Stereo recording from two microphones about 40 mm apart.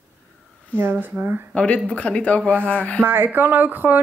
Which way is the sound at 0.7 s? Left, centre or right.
Right.